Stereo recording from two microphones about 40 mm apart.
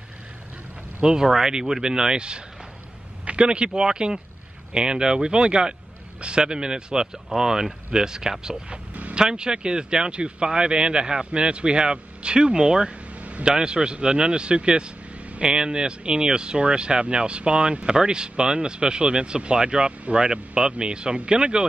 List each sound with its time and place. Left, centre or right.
1.0 s speech: centre